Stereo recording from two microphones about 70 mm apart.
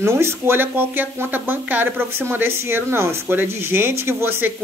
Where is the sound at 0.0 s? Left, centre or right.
Right.